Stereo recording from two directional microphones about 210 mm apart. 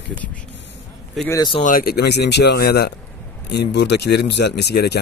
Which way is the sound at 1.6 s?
40° left (ahead or behind).